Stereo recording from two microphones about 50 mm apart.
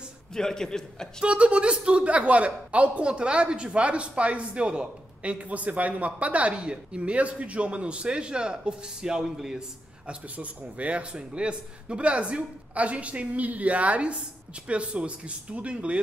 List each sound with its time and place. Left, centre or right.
0.3 s a man's voice: centre
1.2 s speech: right
10.0 s speech: right